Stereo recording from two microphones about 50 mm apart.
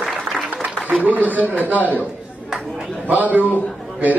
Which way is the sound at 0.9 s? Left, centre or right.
Right.